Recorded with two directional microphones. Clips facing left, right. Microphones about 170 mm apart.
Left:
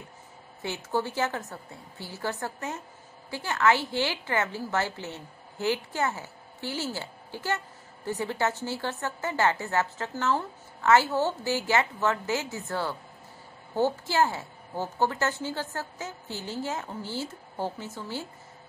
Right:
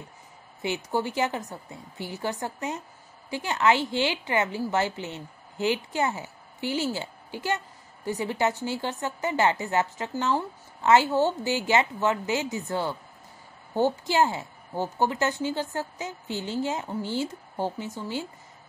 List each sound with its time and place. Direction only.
0.6 s a woman's voice: 15° right (ahead or behind)